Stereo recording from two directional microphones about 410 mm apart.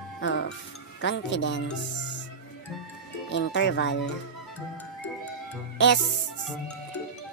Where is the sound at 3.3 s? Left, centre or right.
Left.